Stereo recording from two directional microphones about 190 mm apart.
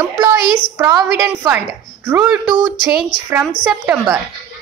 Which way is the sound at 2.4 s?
25° right (ahead or behind).